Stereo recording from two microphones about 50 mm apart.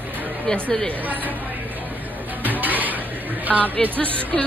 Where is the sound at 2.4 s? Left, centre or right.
Right.